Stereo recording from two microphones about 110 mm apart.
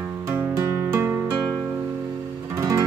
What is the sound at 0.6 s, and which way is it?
Music, 25° right (ahead or behind).